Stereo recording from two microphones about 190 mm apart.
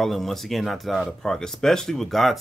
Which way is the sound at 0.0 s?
Centre (ahead or behind).